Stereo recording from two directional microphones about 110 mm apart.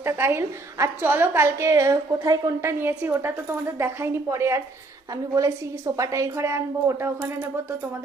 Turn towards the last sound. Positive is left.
turn(degrees=-25)  # may be behind; listen again after turning